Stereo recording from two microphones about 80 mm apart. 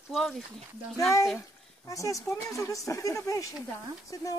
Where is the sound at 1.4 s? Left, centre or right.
Left.